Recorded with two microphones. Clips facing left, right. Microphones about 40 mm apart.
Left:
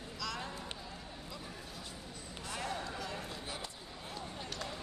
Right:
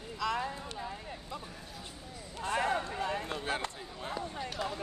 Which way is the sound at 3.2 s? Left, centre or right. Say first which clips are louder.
Right 8 dB; right.